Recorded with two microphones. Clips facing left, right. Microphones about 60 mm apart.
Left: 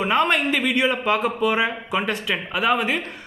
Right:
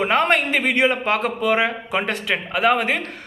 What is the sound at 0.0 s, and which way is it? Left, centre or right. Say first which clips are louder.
A man's voice: right 1 dB; right.